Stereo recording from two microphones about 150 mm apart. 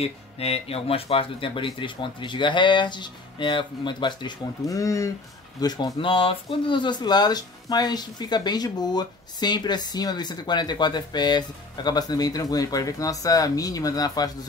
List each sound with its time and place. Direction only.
0.0 s speech: 40° left (ahead or behind); by 14.3 s 25° left (ahead or behind)